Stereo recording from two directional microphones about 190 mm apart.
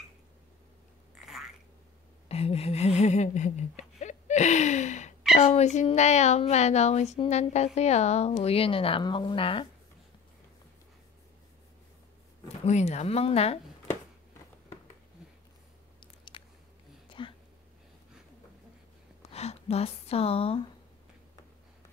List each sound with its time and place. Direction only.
2.2 s a sound: 30° left (ahead or behind)
5.3 s speech: 35° left (ahead or behind)
12.6 s speech: 35° left (ahead or behind)
16.3 s biting: 25° left (ahead or behind)
17.2 s a sound: 25° left (ahead or behind)
19.2 s speech: 35° left (ahead or behind)